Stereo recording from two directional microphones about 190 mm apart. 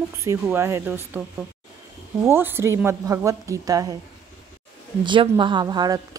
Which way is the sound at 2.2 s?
10° right (ahead or behind).